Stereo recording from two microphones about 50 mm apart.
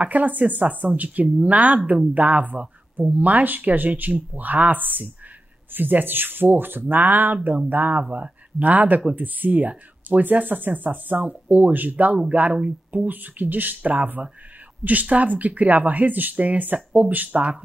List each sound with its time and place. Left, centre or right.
0.0 s speech: right